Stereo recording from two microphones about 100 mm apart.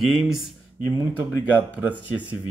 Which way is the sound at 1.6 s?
15° right (ahead or behind).